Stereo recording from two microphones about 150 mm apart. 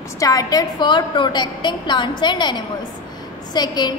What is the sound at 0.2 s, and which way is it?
A woman's voice, 25° left (ahead or behind).